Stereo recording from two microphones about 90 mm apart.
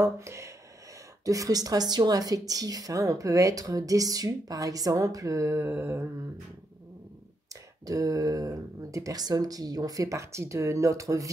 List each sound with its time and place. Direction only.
0.0 s speech: 30° right (ahead or behind)
7.8 s speech: 40° right (ahead or behind)